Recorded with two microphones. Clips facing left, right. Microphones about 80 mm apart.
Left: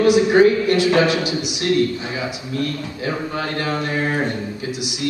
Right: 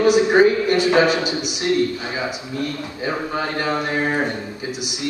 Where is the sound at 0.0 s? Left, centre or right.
Centre.